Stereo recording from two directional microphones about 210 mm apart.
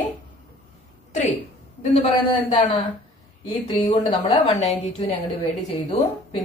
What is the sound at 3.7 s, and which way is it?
A woman's voice, 25° left (ahead or behind).